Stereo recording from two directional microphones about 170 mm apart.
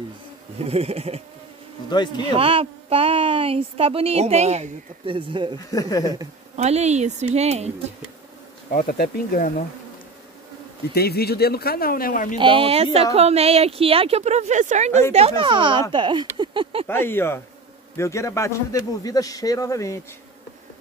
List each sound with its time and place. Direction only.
0.7 s speech: 40° right (ahead or behind)
1.9 s a man's voice: 25° left (ahead or behind)
2.3 s speech: 35° right (ahead or behind)
5.7 s a man's voice: 20° left (ahead or behind)
6.5 s speech: 40° right (ahead or behind)
8.7 s speech: 60° left (ahead or behind)
11.0 s speech: 65° left (ahead or behind)
12.4 s speech: 30° right (ahead or behind)
14.9 s speech: 15° left (ahead or behind)
15.1 s speech: 35° right (ahead or behind)
16.8 s a man's voice: 15° left (ahead or behind)